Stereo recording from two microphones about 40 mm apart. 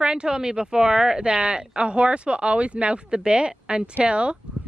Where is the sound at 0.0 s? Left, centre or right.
Right.